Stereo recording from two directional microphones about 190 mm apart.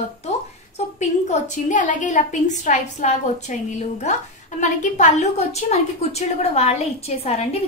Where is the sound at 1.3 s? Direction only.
40° left (ahead or behind).